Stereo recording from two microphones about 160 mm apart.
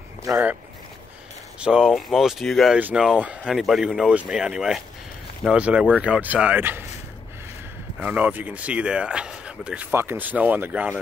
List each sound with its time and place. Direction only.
0.2 s speech: 20° right (ahead or behind)
1.6 s speech: 5° right (ahead or behind)
8.0 s speech: 10° right (ahead or behind)